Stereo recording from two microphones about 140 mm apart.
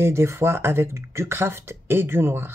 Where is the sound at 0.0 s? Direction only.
20° right (ahead or behind).